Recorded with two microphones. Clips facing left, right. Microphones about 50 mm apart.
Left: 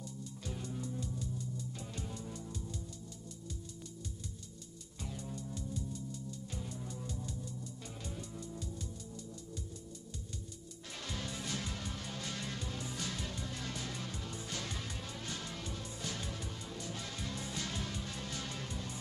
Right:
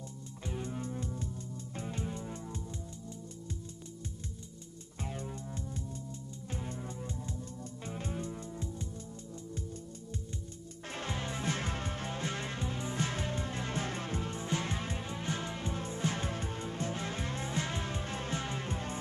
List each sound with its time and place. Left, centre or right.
0.5 s music: right
5.0 s music: right
11.0 s music: right